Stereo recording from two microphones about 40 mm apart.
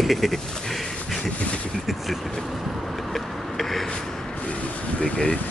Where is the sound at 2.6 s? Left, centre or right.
Centre.